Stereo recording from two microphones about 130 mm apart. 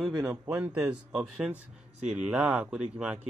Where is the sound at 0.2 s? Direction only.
15° right (ahead or behind).